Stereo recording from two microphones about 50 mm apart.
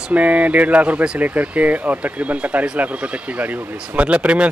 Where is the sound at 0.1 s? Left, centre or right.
Right.